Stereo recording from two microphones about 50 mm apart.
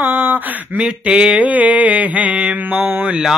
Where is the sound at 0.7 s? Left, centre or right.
Right.